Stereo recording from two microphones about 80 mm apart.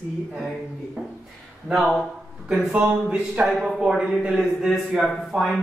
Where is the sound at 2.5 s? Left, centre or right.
Centre.